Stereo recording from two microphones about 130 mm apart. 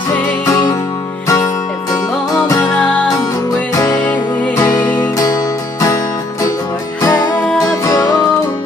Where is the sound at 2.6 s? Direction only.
10° left (ahead or behind).